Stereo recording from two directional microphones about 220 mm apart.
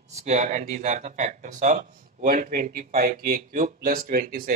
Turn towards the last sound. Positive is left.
turn(degrees=-40)  # may be behind; listen again after turning